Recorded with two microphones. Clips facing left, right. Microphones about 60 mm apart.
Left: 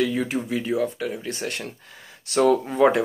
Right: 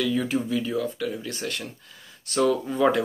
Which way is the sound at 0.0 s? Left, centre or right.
Left.